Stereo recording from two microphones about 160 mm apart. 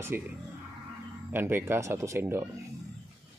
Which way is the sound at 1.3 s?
15° right (ahead or behind).